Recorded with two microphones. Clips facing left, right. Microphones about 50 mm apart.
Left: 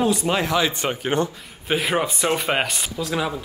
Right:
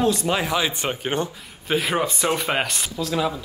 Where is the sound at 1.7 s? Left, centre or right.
Centre.